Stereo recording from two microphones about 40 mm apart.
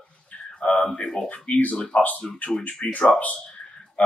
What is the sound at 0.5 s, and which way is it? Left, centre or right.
Speech, left.